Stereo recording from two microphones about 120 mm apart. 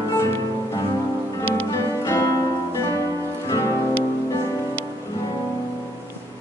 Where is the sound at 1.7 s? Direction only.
20° left (ahead or behind).